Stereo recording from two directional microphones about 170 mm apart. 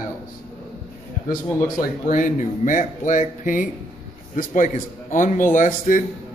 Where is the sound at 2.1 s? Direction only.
50° left (ahead or behind).